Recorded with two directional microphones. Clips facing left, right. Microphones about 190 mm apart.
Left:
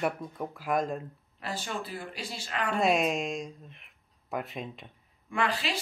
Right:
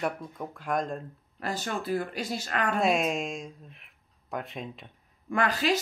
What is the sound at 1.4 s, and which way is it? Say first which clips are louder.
Speech: right 3 dB; 45° right (ahead or behind).